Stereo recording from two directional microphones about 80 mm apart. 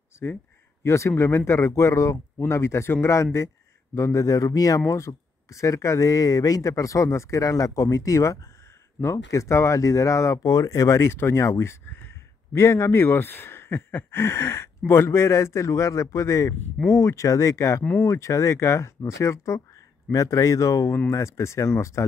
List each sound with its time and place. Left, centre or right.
0.8 s speech: left